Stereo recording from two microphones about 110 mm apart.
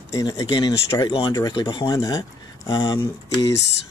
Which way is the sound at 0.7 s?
25° left (ahead or behind).